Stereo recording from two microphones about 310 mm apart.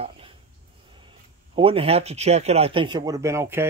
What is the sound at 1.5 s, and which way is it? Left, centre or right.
Speech, centre.